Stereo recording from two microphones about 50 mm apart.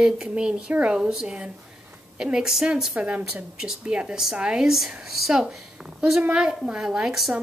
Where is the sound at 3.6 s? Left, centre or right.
Centre.